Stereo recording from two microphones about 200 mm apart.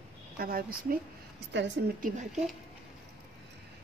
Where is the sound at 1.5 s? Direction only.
60° right (ahead or behind).